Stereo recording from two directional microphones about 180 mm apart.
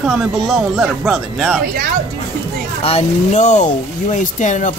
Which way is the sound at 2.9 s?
40° left (ahead or behind).